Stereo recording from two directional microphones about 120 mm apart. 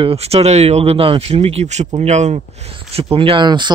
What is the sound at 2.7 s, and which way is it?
A man's voice, 55° right (ahead or behind).